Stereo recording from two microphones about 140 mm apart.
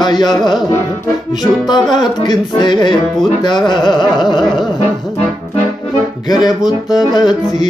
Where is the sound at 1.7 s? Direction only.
30° left (ahead or behind).